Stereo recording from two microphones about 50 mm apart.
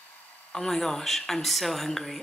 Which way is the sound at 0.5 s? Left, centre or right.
Centre.